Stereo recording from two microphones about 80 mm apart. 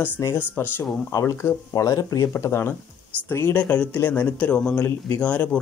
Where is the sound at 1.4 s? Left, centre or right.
Left.